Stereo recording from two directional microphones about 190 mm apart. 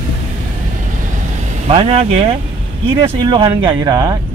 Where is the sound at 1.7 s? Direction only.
30° right (ahead or behind).